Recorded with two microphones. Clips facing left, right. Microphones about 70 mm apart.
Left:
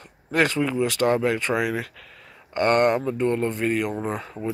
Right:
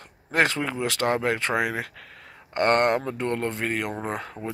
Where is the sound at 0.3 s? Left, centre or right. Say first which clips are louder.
Left 2 dB; right.